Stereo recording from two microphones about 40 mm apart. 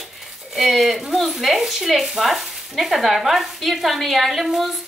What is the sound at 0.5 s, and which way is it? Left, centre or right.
Speech, centre.